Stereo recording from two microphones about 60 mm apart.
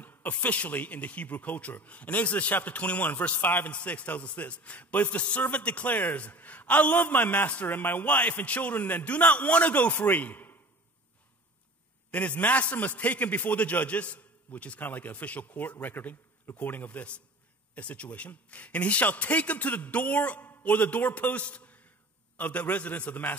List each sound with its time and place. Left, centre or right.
0.0 s a man's voice: left
12.1 s a man's voice: left